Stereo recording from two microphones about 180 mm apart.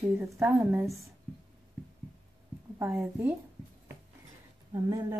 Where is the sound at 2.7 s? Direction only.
10° right (ahead or behind).